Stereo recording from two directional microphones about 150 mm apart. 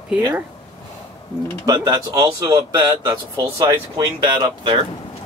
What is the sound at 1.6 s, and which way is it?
Speech, 25° right (ahead or behind).